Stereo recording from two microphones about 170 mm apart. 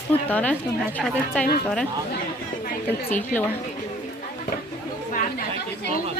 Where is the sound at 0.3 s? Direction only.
10° left (ahead or behind).